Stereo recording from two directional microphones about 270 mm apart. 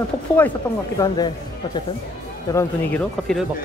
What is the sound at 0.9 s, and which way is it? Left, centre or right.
Speech, centre.